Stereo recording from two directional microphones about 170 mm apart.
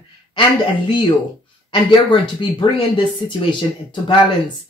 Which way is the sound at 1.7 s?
30° left (ahead or behind).